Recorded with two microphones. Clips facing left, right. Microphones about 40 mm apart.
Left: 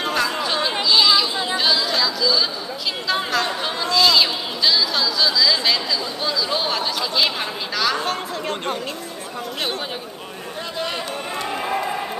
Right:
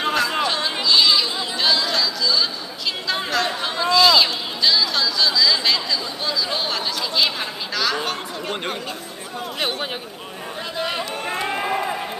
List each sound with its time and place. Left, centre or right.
0.0 s a sound: centre
1.6 s chatter: centre
8.0 s speech: right
11.2 s run: centre
11.7 s run: centre